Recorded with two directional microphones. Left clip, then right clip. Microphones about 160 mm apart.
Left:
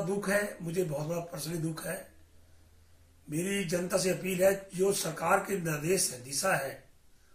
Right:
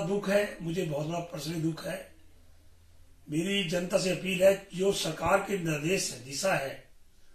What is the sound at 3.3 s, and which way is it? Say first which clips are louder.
A man's voice: right 3 dB; 15° left (ahead or behind).